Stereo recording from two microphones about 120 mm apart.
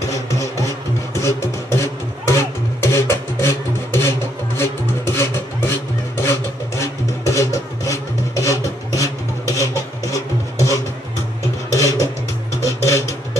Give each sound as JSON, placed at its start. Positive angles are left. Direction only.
{"t": 1.2, "sound": "music", "side_deg": 25}
{"t": 4.6, "sound": "a sound", "side_deg": 20}
{"t": 6.2, "sound": "vehicle", "side_deg": 25}
{"t": 9.0, "sound": "rub", "side_deg": 25}
{"t": 10.1, "sound": "music", "side_deg": 25}
{"t": 11.7, "sound": "a sound", "side_deg": 25}